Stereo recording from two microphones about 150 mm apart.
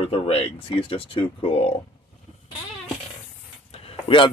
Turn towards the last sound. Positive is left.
turn(degrees=40)  # may be behind; listen again after turning